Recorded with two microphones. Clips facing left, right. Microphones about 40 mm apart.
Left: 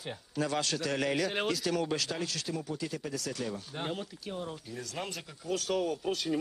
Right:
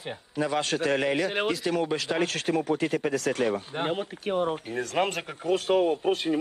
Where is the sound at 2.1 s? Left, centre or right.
Right.